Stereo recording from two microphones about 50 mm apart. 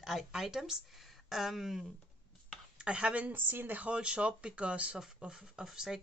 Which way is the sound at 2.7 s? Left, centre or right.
Right.